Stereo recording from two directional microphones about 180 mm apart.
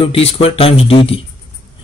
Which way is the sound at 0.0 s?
35° left (ahead or behind).